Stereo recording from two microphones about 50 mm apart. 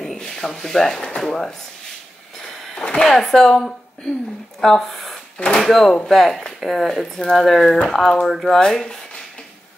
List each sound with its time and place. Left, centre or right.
0.0 s rub: centre
1.0 s speech: centre
2.3 s a sound: centre
3.1 s speech: centre
8.3 s speech: centre
8.5 s speech: centre